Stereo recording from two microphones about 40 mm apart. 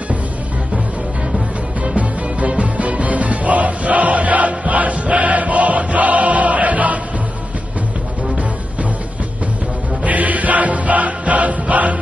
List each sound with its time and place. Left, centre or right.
2.0 s music: right
10.0 s music: right